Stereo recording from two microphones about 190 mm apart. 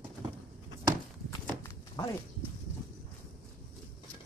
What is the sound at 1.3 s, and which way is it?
Walk, 20° left (ahead or behind).